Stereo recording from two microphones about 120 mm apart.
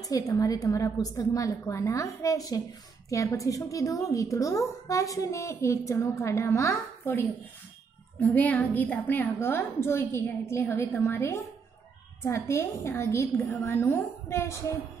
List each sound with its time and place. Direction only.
0.0 s a woman's voice: 30° left (ahead or behind)